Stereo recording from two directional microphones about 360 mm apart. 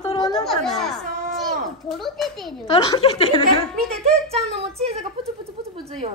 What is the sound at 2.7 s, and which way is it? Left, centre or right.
Speech, centre.